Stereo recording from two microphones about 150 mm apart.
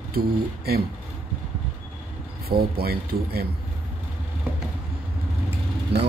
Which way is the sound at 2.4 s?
90° right.